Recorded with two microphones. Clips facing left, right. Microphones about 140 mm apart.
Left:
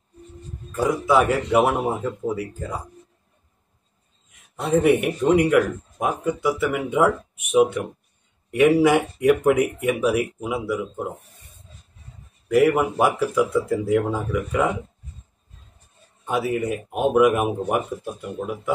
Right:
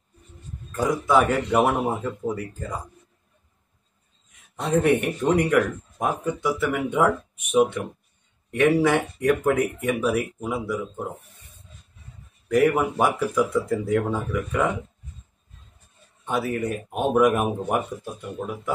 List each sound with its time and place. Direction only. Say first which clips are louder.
0.7 s speech: left 2 dB; 5° left (ahead or behind)
4.7 s speech: left 3 dB; 10° left (ahead or behind)
12.4 s speech: left 2 dB; 5° left (ahead or behind)
16.3 s speech: left 2 dB; 5° left (ahead or behind)